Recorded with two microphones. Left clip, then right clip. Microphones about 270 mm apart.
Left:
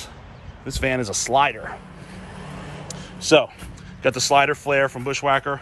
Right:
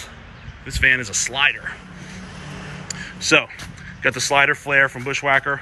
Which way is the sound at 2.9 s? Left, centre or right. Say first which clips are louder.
Even; centre.